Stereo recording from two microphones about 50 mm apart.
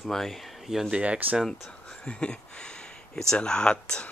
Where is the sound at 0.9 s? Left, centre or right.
Right.